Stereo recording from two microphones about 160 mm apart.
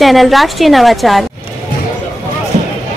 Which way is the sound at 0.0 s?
Centre (ahead or behind).